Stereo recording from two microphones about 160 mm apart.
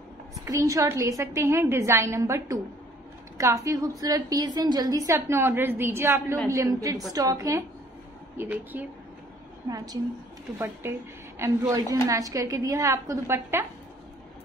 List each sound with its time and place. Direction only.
0.5 s a woman's voice: 20° right (ahead or behind)
9.7 s a woman's voice: 20° right (ahead or behind)